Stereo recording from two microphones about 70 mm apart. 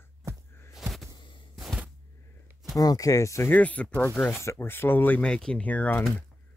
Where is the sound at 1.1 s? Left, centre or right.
Left.